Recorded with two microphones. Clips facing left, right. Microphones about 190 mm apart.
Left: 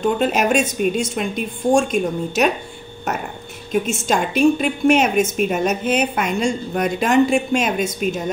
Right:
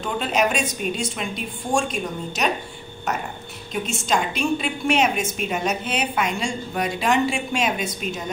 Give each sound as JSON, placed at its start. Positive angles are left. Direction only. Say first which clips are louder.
{"t": 0.0, "sound": "a woman's voice", "louder": "left 5 dB", "side_deg": 45}
{"t": 3.9, "sound": "a woman's voice", "louder": "left 4 dB", "side_deg": 50}